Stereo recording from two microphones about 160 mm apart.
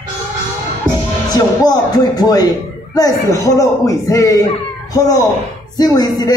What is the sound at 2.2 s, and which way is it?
A man's voice, 25° left (ahead or behind).